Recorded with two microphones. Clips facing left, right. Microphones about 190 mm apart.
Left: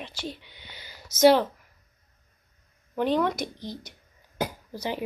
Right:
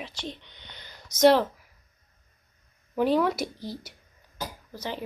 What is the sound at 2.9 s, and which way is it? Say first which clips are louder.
Speech: right 1 dB; 5° right (ahead or behind).